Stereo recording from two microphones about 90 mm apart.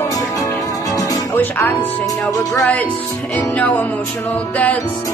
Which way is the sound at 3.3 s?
20° left (ahead or behind).